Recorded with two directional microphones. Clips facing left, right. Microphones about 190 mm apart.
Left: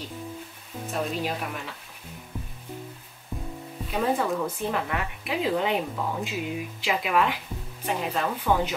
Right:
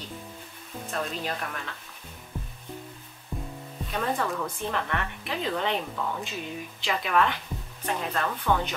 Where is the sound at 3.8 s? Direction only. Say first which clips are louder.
Left 4 dB; 10° left (ahead or behind).